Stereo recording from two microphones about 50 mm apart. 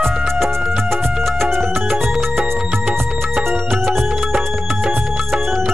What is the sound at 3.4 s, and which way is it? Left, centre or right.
Music, centre.